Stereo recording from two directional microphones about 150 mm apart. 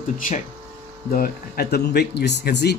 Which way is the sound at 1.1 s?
80° left.